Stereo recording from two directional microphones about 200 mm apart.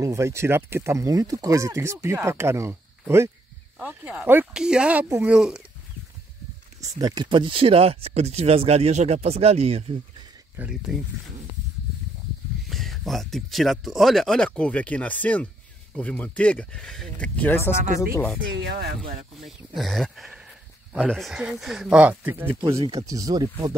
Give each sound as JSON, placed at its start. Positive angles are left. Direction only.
{"t": 0.0, "sound": "speech", "side_deg": -15}
{"t": 6.8, "sound": "speech", "side_deg": -20}
{"t": 10.5, "sound": "speech", "side_deg": -5}
{"t": 12.6, "sound": "speech", "side_deg": 0}
{"t": 18.5, "sound": "speech", "side_deg": -55}
{"t": 19.4, "sound": "speech", "side_deg": 0}
{"t": 22.8, "sound": "speech", "side_deg": -30}
{"t": 23.0, "sound": "speech", "side_deg": -15}